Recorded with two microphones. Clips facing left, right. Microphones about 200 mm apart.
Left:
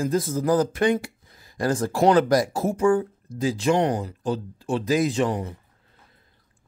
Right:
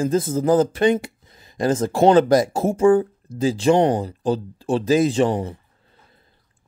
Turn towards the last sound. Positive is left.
turn(degrees=-30)  # may be behind; listen again after turning